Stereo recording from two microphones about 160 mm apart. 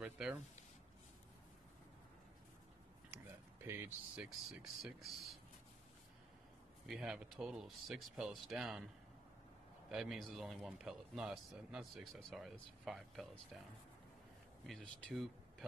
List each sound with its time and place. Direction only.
0.0 s speech: 10° right (ahead or behind)
3.6 s speech: 15° right (ahead or behind)
4.8 s a man's voice: centre (ahead or behind)
6.9 s a man's voice: 5° right (ahead or behind)
9.8 s a man's voice: centre (ahead or behind)
14.7 s a man's voice: centre (ahead or behind)